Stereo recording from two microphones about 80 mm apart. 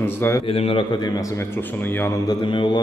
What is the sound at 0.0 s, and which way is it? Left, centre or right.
Speech, left.